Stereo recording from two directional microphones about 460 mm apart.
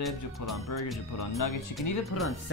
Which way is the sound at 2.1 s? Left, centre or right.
Left.